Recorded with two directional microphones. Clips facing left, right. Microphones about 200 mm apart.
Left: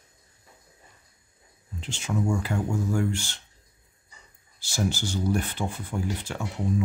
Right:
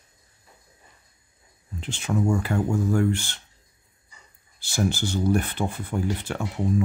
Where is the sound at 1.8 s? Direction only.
55° right (ahead or behind).